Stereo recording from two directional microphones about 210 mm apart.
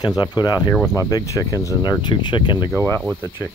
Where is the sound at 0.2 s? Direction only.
20° left (ahead or behind).